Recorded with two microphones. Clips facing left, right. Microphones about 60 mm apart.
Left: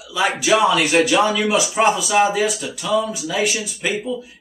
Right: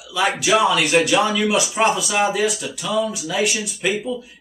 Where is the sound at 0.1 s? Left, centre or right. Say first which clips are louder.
Left 1 dB; centre.